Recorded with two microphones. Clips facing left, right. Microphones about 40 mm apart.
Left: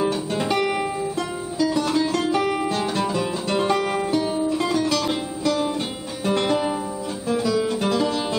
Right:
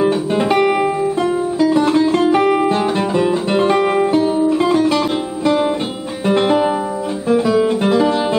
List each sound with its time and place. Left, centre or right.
0.0 s music: right
1.6 s guitar: right
6.2 s music: right